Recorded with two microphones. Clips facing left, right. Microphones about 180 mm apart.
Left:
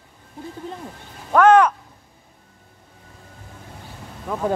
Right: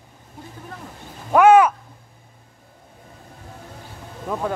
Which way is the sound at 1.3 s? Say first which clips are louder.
Right 1 dB; 10° right (ahead or behind).